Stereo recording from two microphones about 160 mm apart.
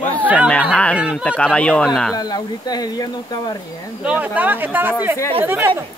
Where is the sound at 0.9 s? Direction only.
5° right (ahead or behind).